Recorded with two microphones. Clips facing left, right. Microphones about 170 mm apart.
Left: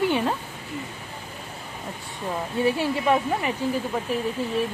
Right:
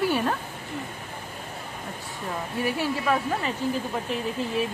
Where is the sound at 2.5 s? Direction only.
25° left (ahead or behind).